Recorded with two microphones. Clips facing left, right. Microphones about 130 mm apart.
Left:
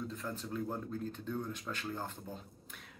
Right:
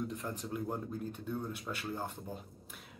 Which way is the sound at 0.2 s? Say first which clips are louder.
Even; 15° right (ahead or behind).